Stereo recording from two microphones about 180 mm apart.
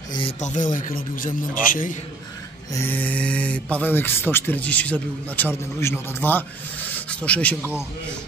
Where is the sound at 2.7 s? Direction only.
10° left (ahead or behind).